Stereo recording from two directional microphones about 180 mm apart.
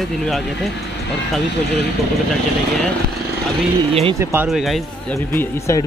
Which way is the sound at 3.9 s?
35° right (ahead or behind).